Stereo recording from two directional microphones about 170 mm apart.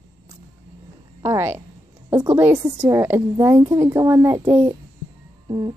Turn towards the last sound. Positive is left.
turn(degrees=-25)  # may be behind; listen again after turning